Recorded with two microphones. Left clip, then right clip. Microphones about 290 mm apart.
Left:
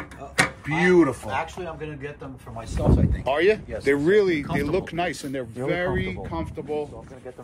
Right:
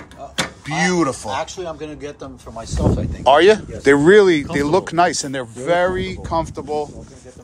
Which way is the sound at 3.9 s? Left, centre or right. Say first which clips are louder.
Right 9 dB; right.